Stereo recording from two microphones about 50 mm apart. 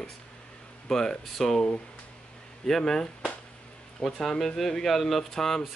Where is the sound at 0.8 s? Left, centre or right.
Centre.